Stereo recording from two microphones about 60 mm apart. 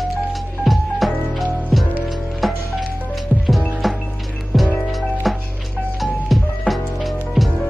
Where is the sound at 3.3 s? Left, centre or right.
Right.